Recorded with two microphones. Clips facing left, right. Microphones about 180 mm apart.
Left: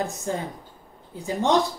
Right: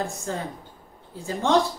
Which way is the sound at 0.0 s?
20° left (ahead or behind).